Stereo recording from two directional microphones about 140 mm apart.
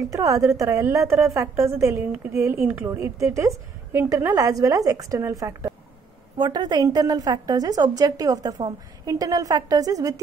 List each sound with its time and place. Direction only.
0.0 s a woman's voice: 25° right (ahead or behind)